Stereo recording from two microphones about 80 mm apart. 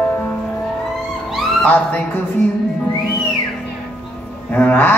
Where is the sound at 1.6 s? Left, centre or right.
Left.